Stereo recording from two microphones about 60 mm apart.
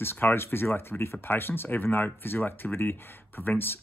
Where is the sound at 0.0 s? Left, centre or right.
Left.